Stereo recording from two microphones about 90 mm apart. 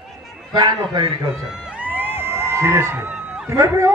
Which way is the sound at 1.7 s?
15° right (ahead or behind).